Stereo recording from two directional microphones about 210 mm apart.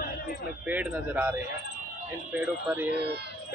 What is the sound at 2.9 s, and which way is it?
Speech, 50° right (ahead or behind).